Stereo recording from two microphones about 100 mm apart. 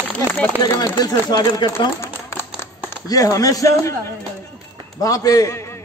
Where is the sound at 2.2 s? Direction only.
25° left (ahead or behind).